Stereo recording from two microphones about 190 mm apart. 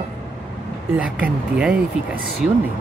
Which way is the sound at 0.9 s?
5° right (ahead or behind).